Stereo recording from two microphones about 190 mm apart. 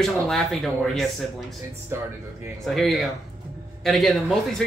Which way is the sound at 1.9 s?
10° right (ahead or behind).